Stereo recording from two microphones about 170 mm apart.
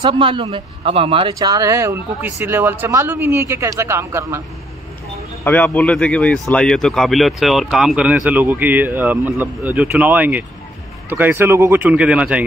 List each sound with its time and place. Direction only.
0.0 s a man's voice: 30° right (ahead or behind)
5.4 s a man's voice: 10° left (ahead or behind); by 12.4 s 5° right (ahead or behind)